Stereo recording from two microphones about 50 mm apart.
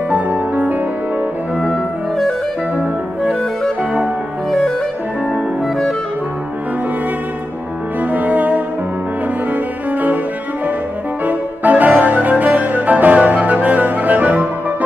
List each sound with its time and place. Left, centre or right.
0.1 s music: right
8.0 s music: right
9.5 s cello: right
11.2 s music: right